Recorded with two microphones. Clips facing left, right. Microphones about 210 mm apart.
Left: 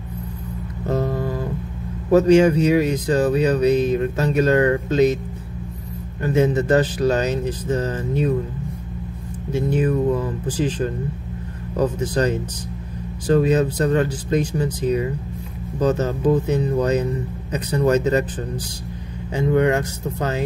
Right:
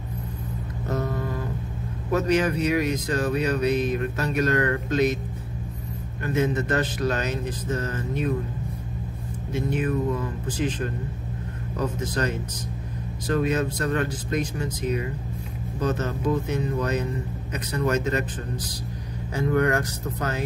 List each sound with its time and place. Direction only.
0.8 s music: 30° left (ahead or behind)
2.0 s speech: 30° left (ahead or behind)
6.2 s speech: 30° left (ahead or behind)
9.5 s speech: 30° left (ahead or behind)
19.3 s speech: 20° left (ahead or behind)